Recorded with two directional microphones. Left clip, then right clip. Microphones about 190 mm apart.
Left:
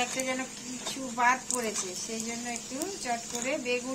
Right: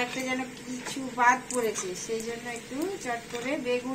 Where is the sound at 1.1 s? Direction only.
15° left (ahead or behind).